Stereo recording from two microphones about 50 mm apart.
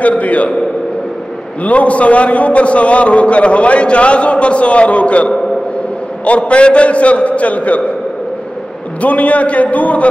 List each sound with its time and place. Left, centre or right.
0.0 s a man's voice: left
1.6 s a man's voice: left
9.0 s a man's voice: left